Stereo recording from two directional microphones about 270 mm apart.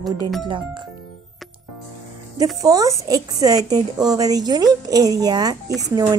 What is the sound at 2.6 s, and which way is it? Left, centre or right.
A woman's voice, centre.